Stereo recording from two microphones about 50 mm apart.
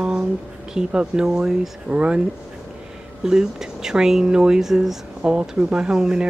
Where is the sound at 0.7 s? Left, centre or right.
Centre.